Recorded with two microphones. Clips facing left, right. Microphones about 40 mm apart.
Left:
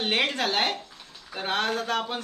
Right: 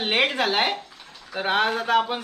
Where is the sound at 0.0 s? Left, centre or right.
Centre.